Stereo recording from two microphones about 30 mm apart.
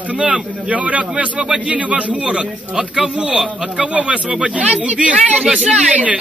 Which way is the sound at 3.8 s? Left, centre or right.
Right.